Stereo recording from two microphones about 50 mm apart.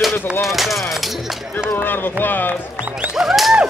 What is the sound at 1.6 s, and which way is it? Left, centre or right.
Speech, left.